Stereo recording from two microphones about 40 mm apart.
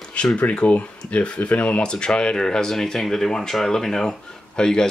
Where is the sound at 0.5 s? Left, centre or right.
Left.